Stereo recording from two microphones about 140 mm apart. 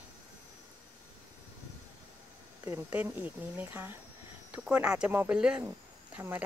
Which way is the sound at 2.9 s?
10° right (ahead or behind).